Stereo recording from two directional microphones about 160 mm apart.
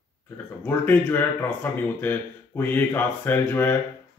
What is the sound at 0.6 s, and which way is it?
Speech, 15° left (ahead or behind).